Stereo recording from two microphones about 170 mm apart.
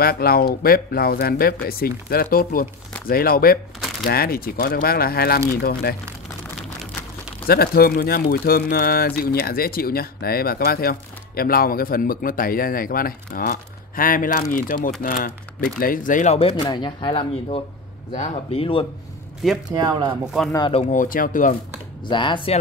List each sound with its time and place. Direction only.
0.0 s speech: 65° left (ahead or behind)
7.4 s speech: 65° left (ahead or behind); by 18.9 s 35° left (ahead or behind)
19.7 s speech: 25° right (ahead or behind)
20.5 s speech: 30° left (ahead or behind)
20.9 s speech: 55° left (ahead or behind)
22.0 s speech: 30° left (ahead or behind)